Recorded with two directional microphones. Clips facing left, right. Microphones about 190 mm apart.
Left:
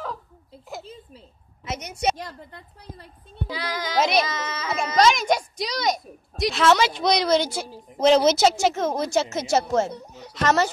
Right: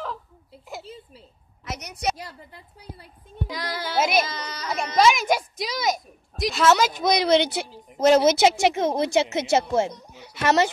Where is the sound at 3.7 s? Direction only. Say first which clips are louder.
Left 1 dB; 5° right (ahead or behind).